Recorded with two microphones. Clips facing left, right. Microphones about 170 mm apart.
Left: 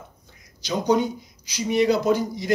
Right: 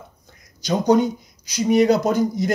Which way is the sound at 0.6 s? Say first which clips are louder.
Right 4 dB; 45° right (ahead or behind).